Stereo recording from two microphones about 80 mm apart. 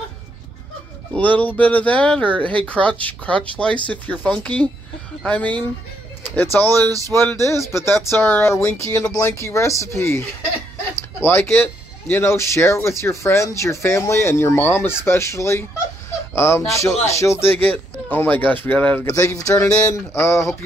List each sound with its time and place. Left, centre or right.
1.1 s speech: centre
6.9 s speech: right
7.6 s speech: left
19.0 s speech: left
19.8 s speech: left